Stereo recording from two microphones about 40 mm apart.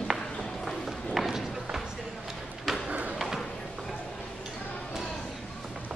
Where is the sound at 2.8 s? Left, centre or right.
Right.